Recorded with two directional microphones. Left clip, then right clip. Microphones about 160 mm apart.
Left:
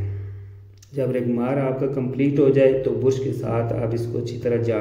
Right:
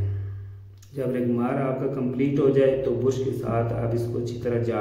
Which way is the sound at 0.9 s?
20° left (ahead or behind).